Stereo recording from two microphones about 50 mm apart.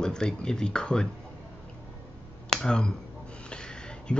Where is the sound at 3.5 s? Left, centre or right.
Centre.